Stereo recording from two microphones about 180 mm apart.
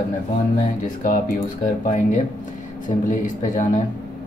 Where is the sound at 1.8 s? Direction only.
45° left (ahead or behind).